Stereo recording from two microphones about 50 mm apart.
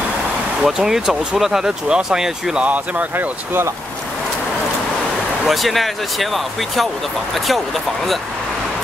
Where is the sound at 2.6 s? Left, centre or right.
Right.